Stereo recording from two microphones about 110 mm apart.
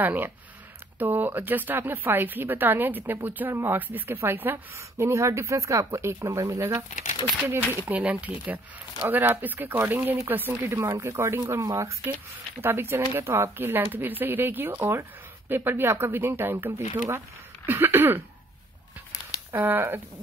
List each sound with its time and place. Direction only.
0.0 s a woman's voice: 15° right (ahead or behind)
19.5 s a woman's voice: 20° right (ahead or behind)